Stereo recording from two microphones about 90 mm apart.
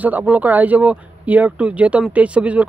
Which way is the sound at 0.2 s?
15° right (ahead or behind).